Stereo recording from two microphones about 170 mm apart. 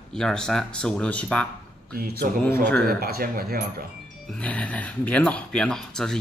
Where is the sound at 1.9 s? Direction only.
60° right (ahead or behind).